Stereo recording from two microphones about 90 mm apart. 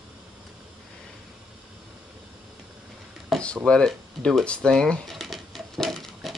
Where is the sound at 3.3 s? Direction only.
Centre (ahead or behind).